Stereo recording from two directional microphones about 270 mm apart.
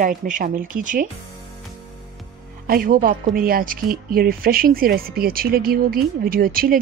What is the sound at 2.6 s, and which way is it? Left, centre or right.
Speech, right.